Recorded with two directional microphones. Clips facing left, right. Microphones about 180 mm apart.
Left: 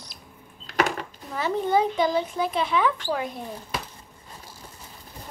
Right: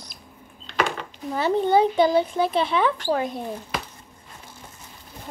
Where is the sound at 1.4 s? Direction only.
30° right (ahead or behind).